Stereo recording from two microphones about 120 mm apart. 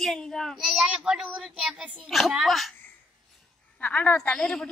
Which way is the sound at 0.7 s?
5° right (ahead or behind).